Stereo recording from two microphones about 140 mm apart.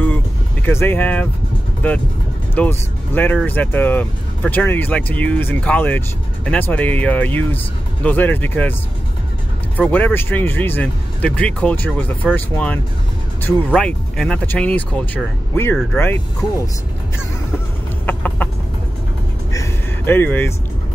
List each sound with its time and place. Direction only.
0.7 s speech: 15° left (ahead or behind)
9.8 s speech: 10° left (ahead or behind)
13.7 s speech: 5° left (ahead or behind)
18.0 s chicken: 10° left (ahead or behind)
19.5 s a sound: 20° left (ahead or behind)